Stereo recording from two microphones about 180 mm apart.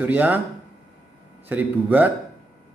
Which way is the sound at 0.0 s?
10° right (ahead or behind).